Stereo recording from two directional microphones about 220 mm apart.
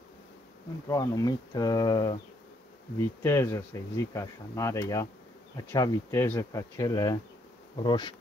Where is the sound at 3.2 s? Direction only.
10° left (ahead or behind).